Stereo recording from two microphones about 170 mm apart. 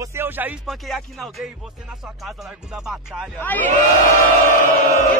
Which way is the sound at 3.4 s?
10° left (ahead or behind).